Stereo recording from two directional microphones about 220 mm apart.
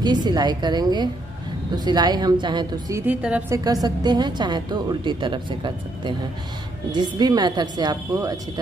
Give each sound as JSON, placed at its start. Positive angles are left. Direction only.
{"t": 0.0, "sound": "a woman's voice", "side_deg": -20}
{"t": 3.1, "sound": "a woman's voice", "side_deg": -5}